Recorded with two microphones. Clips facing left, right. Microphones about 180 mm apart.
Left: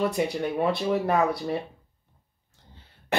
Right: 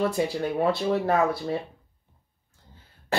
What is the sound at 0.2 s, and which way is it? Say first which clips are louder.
Speech: right 1 dB; 20° left (ahead or behind).